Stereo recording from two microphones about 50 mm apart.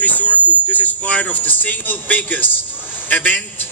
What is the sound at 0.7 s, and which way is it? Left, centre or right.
A man's voice, left.